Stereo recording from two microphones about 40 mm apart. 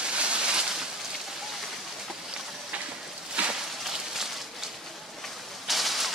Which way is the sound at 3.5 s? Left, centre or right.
Centre.